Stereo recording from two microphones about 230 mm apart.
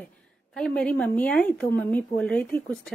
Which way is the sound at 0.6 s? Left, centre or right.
Centre.